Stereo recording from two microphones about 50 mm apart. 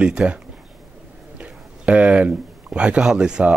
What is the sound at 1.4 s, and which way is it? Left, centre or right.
Speech, right.